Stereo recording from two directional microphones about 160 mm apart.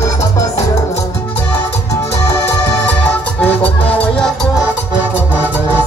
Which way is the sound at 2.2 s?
15° left (ahead or behind).